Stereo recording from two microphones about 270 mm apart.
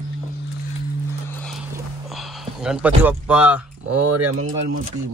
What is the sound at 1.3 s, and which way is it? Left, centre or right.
Music, centre.